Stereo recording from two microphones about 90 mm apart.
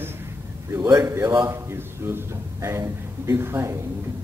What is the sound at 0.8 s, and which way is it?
A man's voice, 40° right (ahead or behind).